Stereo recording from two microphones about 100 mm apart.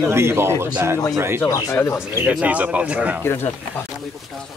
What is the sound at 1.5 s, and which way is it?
Speech, 35° left (ahead or behind).